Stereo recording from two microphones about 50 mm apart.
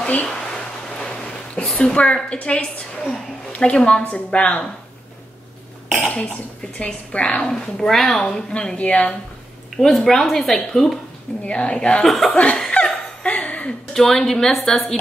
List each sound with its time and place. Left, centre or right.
0.0 s speech: left
0.5 s a sound: centre
1.7 s a woman's voice: centre
5.9 s cough: centre
6.8 s a woman's voice: left
7.7 s a woman's voice: centre
8.7 s a woman's voice: left
9.8 s a woman's voice: centre
11.4 s a woman's voice: left
12.0 s a woman's voice: centre
13.2 s a sound: left
13.9 s a woman's voice: centre